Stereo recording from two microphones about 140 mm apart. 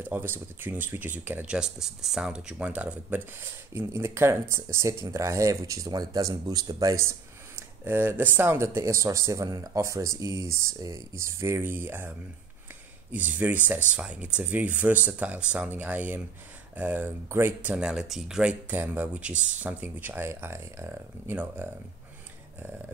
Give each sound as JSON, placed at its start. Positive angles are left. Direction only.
{"t": 0.0, "sound": "speech", "side_deg": -15}
{"t": 13.1, "sound": "speech", "side_deg": -10}